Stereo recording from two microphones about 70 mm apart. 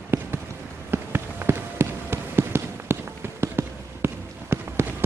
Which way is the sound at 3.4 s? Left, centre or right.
Right.